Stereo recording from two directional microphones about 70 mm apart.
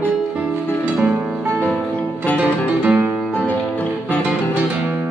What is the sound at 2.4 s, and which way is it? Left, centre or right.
Music, right.